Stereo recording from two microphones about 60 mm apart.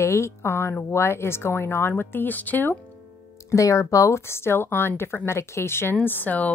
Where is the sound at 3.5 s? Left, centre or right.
Left.